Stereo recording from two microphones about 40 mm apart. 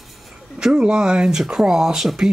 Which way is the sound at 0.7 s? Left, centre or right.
Right.